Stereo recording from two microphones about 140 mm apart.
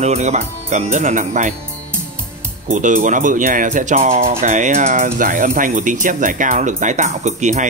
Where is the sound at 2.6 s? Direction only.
65° right (ahead or behind).